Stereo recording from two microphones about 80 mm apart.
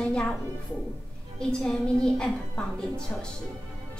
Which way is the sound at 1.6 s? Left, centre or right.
Centre.